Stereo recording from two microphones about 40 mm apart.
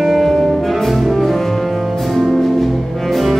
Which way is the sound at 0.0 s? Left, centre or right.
Centre.